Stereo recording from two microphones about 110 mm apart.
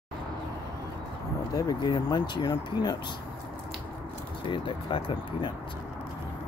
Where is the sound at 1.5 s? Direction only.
35° left (ahead or behind).